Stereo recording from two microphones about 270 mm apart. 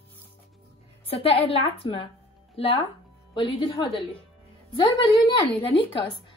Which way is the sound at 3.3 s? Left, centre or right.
Centre.